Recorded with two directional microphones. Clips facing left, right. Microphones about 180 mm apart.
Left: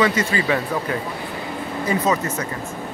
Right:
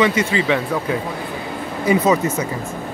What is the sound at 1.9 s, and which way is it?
Speech, 10° right (ahead or behind).